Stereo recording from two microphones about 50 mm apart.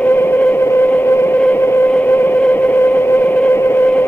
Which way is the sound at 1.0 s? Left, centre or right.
Left.